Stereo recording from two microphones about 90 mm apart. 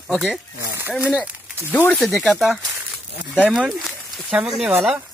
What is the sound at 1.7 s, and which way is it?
Speech, 20° left (ahead or behind).